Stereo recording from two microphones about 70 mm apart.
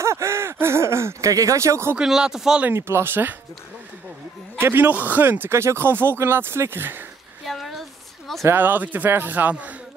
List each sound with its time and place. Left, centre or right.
0.0 s speech: right
2.0 s speech: centre
2.7 s speech: right
4.6 s speech: right
7.4 s a sound: centre
8.5 s speech: right